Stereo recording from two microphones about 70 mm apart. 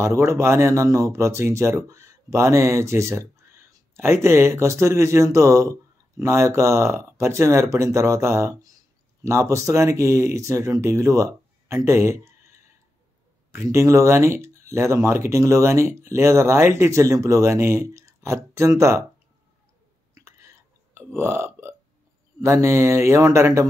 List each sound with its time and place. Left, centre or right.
0.0 s speech: right
11.6 s a sound: right
13.5 s speech: right
20.2 s burping: right
22.4 s speech: right